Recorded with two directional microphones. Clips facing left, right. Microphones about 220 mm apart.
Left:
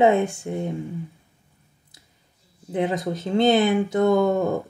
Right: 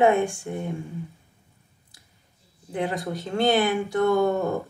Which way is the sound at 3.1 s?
20° left (ahead or behind).